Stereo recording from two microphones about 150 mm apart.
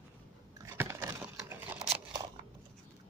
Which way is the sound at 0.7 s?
15° right (ahead or behind).